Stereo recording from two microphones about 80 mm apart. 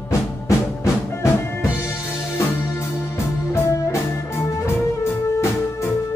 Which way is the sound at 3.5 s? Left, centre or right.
Left.